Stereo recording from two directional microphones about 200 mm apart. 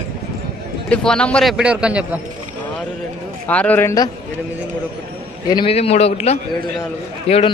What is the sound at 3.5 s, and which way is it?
Speech, 10° left (ahead or behind).